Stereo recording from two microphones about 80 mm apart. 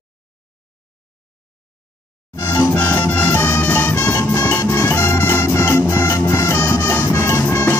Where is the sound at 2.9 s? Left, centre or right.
Left.